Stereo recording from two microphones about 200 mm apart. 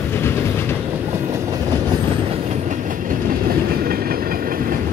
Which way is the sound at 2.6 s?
40° right (ahead or behind).